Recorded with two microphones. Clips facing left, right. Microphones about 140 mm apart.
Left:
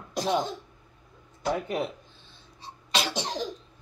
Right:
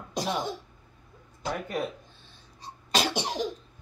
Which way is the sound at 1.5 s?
25° left (ahead or behind).